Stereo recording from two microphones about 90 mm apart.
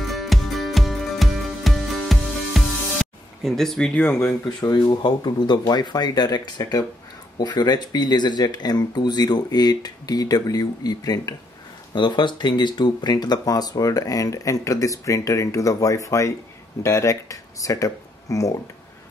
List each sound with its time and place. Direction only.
0.1 s music: centre (ahead or behind)
4.6 s speech: 50° left (ahead or behind)
11.9 s speech: 60° left (ahead or behind); by 18.5 s 40° left (ahead or behind)